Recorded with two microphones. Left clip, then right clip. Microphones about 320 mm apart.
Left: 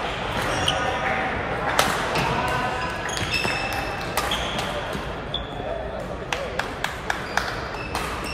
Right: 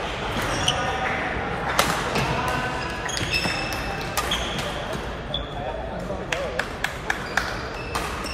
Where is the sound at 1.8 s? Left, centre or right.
Left.